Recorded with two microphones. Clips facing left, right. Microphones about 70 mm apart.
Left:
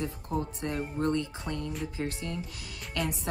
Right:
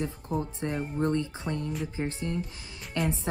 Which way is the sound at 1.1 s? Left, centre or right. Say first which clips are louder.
Right 2 dB; right.